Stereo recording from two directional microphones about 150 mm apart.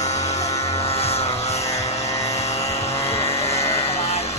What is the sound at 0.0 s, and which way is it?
Electric shaver, 20° left (ahead or behind).